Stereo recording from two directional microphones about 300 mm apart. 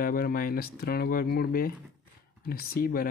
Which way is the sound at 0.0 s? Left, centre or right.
Left.